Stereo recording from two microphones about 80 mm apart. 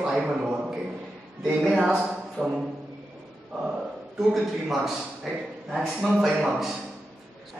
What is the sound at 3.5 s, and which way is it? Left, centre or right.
A man's voice, centre.